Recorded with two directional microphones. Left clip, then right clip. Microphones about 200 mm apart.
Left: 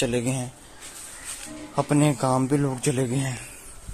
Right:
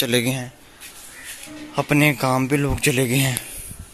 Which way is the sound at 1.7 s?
5° right (ahead or behind).